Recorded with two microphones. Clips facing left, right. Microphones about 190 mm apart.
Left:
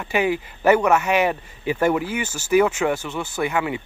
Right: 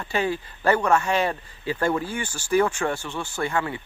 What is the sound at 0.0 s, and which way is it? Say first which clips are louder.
Speech: left 4 dB; 15° left (ahead or behind).